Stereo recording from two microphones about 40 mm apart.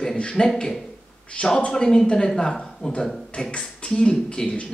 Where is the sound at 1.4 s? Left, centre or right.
Left.